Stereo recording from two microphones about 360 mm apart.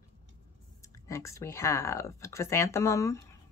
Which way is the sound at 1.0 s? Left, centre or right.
Centre.